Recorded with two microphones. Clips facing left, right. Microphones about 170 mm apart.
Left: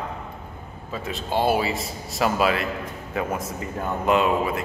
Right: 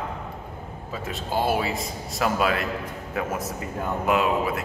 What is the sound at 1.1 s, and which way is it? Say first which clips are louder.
A man's voice: left 2 dB; centre (ahead or behind).